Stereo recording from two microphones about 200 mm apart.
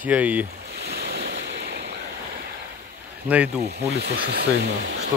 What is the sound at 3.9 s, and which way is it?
Speech, 55° right (ahead or behind).